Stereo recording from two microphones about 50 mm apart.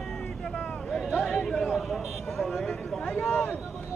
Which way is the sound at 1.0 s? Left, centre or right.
Centre.